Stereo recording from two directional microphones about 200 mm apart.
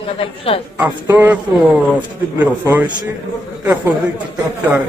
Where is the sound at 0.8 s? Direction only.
10° right (ahead or behind).